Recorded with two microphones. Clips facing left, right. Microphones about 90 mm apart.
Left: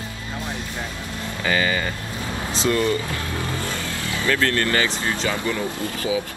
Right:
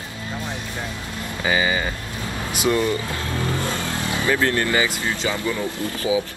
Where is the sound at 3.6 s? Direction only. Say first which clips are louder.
Right 3 dB; 20° right (ahead or behind).